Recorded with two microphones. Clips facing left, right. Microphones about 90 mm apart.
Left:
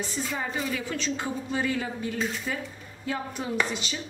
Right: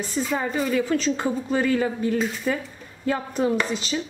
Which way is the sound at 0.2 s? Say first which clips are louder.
Right 9 dB; 55° right (ahead or behind).